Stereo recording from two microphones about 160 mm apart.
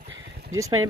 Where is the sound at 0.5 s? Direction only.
20° right (ahead or behind).